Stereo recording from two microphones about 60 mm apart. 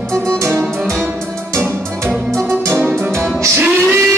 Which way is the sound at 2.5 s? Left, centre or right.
Right.